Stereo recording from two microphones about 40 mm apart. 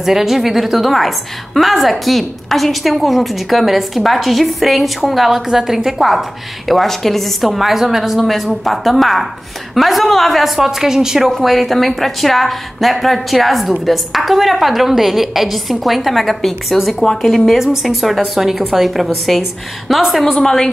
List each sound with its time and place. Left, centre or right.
0.0 s a woman's voice: centre
8.2 s a woman's voice: centre
20.3 s a woman's voice: centre